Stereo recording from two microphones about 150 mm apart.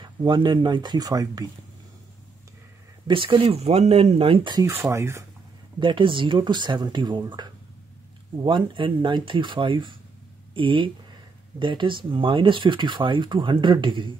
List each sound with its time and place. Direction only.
0.0 s speech: 30° right (ahead or behind)
3.1 s speech: 35° right (ahead or behind)
4.6 s speech: 15° right (ahead or behind)
5.8 s speech: 35° right (ahead or behind)